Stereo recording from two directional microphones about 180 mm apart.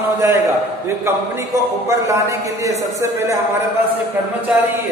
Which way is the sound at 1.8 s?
15° right (ahead or behind).